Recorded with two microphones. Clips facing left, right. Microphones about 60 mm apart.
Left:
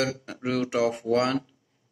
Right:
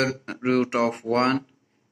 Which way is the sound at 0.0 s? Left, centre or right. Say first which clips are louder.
Right 3 dB; right.